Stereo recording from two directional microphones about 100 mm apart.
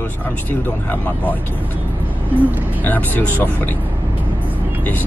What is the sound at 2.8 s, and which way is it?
Speech, 20° left (ahead or behind).